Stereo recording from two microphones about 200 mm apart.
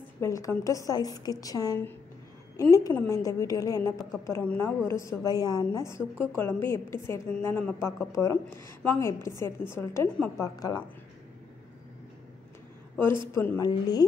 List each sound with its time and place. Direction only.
0.2 s a woman's voice: 15° left (ahead or behind)
10.4 s a woman's voice: 20° left (ahead or behind)
13.3 s a woman's voice: 15° left (ahead or behind)